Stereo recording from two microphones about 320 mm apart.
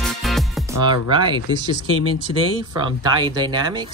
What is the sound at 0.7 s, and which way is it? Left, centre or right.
Music, left.